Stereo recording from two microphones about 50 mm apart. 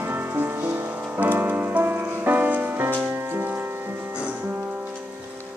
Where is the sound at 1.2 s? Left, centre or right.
Right.